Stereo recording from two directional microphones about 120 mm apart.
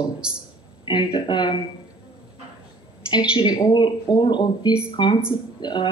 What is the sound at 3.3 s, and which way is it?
Speech, 40° left (ahead or behind).